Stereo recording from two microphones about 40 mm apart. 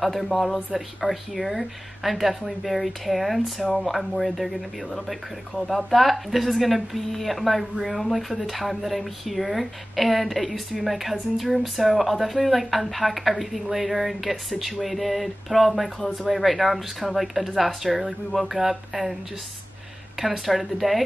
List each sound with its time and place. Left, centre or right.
0.0 s speech: centre
20.2 s speech: centre